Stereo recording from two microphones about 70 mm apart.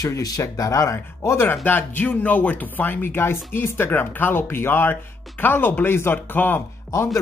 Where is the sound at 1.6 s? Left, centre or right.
Left.